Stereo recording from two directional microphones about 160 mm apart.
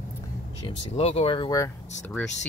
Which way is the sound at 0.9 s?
40° left (ahead or behind).